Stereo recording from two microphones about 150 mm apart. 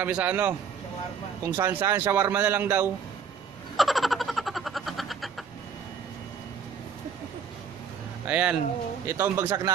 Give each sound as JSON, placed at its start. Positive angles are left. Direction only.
{"t": 0.0, "sound": "speech", "side_deg": -10}
{"t": 3.7, "sound": "a sound", "side_deg": 0}
{"t": 8.3, "sound": "speech", "side_deg": -10}